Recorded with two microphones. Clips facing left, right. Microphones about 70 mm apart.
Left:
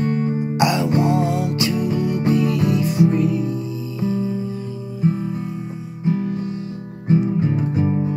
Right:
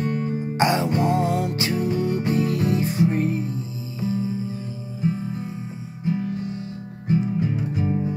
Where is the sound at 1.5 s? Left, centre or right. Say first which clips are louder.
Left 3 dB; left.